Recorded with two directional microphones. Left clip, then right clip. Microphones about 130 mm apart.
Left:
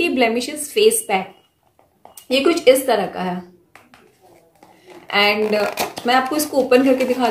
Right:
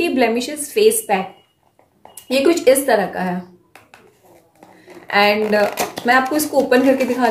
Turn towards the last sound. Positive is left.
turn(degrees=15)  # may be behind; listen again after turning